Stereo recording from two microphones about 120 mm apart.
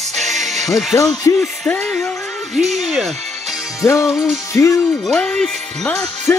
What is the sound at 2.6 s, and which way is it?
Speech, 75° right (ahead or behind).